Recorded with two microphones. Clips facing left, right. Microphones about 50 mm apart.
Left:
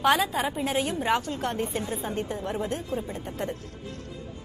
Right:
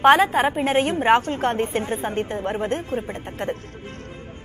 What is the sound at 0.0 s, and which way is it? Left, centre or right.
A woman's voice, right.